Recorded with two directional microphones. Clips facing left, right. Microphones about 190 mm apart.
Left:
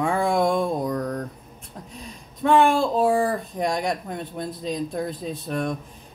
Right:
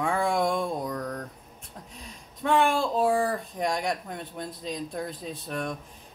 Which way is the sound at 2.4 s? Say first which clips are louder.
Left 5 dB; 30° left (ahead or behind).